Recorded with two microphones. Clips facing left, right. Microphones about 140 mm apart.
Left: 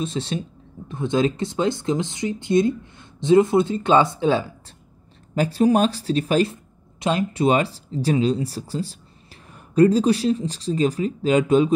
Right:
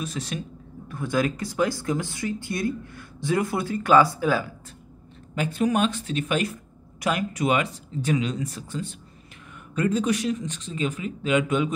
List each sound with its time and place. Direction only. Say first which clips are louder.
0.0 s speech: left 5 dB; 25° left (ahead or behind)